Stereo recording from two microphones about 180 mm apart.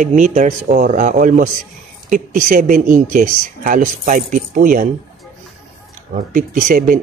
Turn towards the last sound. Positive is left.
turn(degrees=-50)  # may be behind; listen again after turning